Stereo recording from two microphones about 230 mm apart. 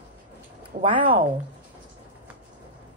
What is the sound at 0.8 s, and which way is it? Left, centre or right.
Speech, right.